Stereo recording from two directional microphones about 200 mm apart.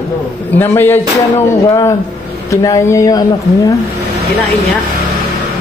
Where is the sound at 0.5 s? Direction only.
10° left (ahead or behind).